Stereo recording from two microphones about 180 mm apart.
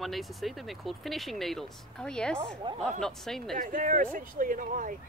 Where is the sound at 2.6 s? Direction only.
25° right (ahead or behind).